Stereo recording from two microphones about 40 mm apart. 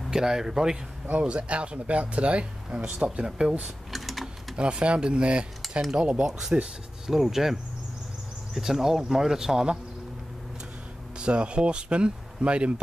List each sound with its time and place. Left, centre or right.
0.1 s speech: centre
1.1 s speech: right
3.9 s typing: centre
4.6 s speech: right
7.1 s speech: centre
8.5 s speech: centre
11.1 s speech: right